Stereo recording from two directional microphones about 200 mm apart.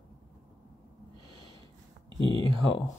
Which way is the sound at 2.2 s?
25° left (ahead or behind).